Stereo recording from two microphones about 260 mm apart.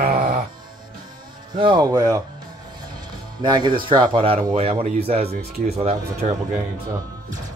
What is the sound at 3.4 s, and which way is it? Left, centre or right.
Speech, centre.